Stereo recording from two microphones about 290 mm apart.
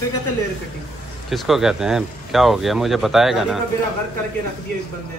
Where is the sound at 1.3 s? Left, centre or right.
Centre.